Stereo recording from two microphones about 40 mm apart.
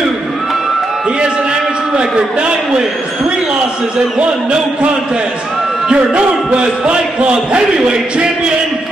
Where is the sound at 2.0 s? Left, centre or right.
Right.